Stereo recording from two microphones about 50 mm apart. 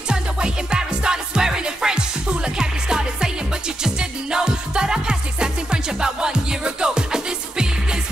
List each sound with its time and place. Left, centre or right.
0.1 s music: centre